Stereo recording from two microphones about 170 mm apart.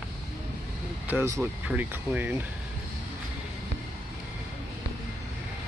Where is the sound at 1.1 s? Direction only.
15° right (ahead or behind).